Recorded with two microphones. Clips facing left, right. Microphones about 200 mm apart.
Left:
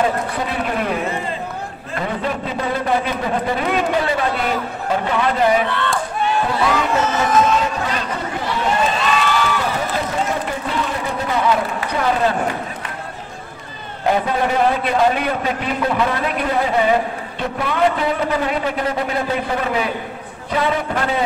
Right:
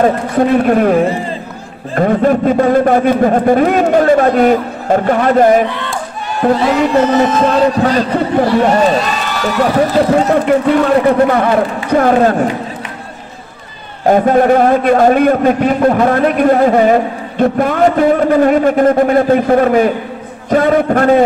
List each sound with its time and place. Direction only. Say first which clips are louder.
0.0 s a man's voice: right 9 dB; 50° right (ahead or behind)
2.0 s a man's voice: right 12 dB; 50° right (ahead or behind)
7.2 s a man's voice: right 6 dB; 35° right (ahead or behind)
9.8 s a man's voice: right 11 dB; 75° right (ahead or behind); by 12.4 s 50° right (ahead or behind)
14.0 s a man's voice: right 9 dB; 50° right (ahead or behind)